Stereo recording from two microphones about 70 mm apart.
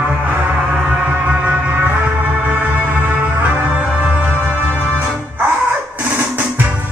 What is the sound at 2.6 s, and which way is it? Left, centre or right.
Music, right.